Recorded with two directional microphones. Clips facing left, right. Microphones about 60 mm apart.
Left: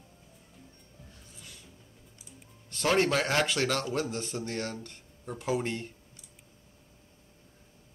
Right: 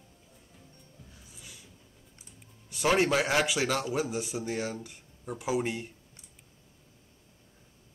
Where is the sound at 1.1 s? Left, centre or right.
Centre.